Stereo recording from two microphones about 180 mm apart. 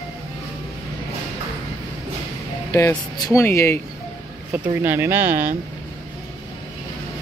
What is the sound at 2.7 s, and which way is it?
Speech, 15° left (ahead or behind).